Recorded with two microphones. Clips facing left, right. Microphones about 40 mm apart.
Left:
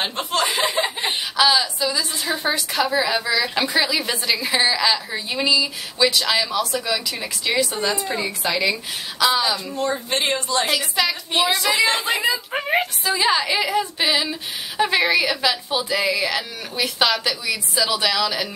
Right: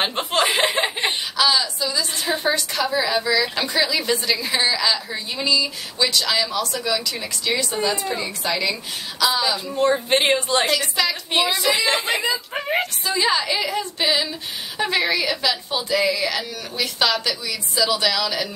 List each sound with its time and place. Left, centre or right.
0.3 s chuckle: right
1.3 s a woman's voice: centre
9.8 s a woman's voice: right
10.7 s a woman's voice: centre